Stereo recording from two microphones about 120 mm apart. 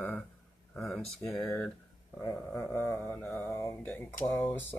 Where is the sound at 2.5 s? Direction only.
15° left (ahead or behind).